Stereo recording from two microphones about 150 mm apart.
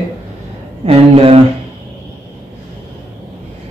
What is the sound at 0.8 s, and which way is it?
Speech, 40° right (ahead or behind).